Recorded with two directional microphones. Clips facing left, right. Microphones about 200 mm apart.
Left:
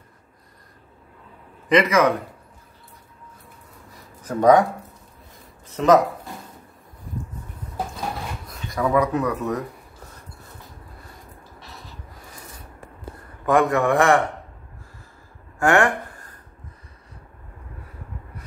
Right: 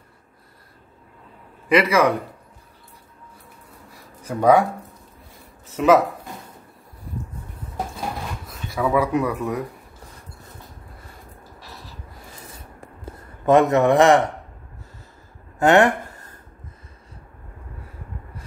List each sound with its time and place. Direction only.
1.7 s speech: 10° right (ahead or behind)
3.9 s a sound: 10° right (ahead or behind)
5.8 s speech: 10° right (ahead or behind)
8.5 s speech: 5° right (ahead or behind)
13.5 s a man's voice: 20° right (ahead or behind)
15.6 s a sound: 20° right (ahead or behind)